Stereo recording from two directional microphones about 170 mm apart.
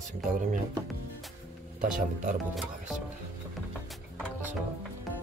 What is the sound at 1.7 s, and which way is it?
Speech, 50° right (ahead or behind).